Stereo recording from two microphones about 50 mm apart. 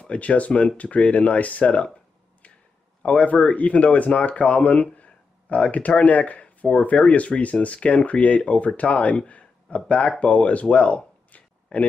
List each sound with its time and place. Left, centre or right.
0.0 s speech: left
3.0 s speech: left